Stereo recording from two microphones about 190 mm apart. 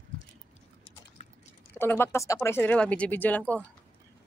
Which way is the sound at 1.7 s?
10° left (ahead or behind).